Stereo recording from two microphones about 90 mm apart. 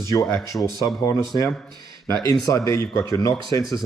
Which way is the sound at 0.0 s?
35° left (ahead or behind).